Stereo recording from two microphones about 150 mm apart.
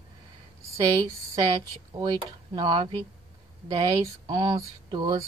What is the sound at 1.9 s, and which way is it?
Speech, 25° right (ahead or behind).